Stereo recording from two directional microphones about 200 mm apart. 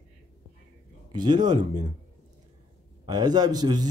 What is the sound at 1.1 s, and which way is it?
Speech, 20° right (ahead or behind).